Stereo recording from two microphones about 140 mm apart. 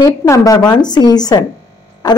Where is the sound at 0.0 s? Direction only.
25° left (ahead or behind).